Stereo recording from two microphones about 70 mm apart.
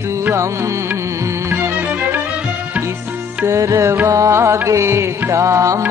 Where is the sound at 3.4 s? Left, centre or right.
Right.